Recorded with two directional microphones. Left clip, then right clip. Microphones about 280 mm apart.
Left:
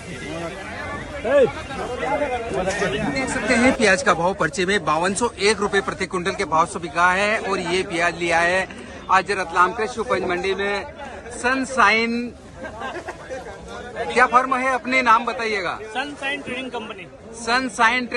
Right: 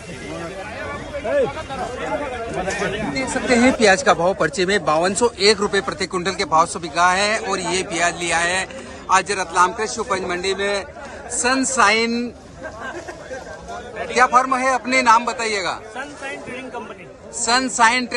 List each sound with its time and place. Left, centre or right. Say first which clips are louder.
2.5 s speech: left 1 dB; centre
14.1 s speech: right 1 dB; centre